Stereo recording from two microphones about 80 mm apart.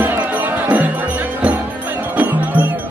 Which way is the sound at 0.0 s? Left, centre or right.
Right.